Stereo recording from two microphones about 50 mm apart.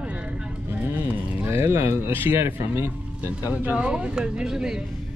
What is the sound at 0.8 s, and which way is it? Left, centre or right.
Speech, right.